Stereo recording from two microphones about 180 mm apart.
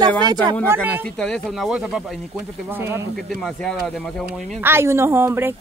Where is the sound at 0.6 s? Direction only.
10° right (ahead or behind).